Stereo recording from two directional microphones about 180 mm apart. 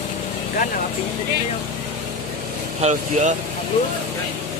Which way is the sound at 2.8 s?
40° right (ahead or behind).